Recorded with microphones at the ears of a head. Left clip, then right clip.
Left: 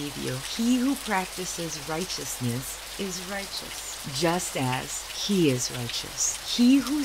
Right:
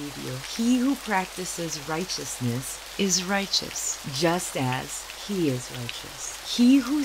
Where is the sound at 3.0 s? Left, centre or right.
Right.